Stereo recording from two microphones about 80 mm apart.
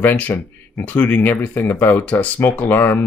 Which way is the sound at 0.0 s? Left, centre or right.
Left.